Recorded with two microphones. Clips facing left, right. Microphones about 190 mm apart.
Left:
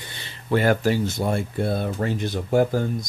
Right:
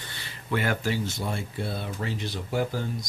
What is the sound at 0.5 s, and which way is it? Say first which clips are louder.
Speech: left 7 dB; 40° left (ahead or behind).